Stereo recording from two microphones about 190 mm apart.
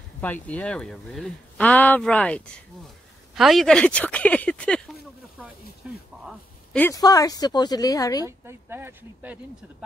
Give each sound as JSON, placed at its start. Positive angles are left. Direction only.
{"t": 0.2, "sound": "speech", "side_deg": 10}
{"t": 5.8, "sound": "speech", "side_deg": -5}
{"t": 6.2, "sound": "speech", "side_deg": 5}
{"t": 6.9, "sound": "a woman's voice", "side_deg": 20}
{"t": 8.3, "sound": "speech", "side_deg": -10}